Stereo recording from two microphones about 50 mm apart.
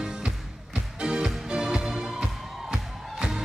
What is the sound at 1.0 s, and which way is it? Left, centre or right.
Music, centre.